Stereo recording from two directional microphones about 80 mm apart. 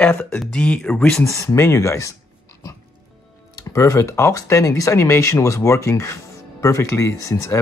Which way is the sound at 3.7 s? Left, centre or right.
Left.